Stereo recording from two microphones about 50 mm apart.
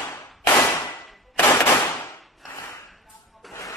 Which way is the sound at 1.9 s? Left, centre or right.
Left.